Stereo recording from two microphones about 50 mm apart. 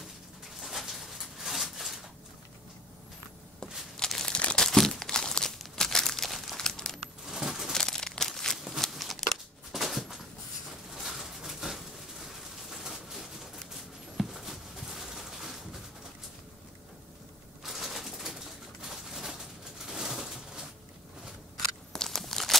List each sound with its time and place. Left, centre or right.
0.6 s a sound: centre
4.3 s crumpling: left
4.6 s crumpling: centre
7.2 s a sound: centre
7.7 s crumpling: centre
9.3 s a sound: centre
17.6 s bird: centre
19.9 s pigeon: centre
21.9 s crunch: centre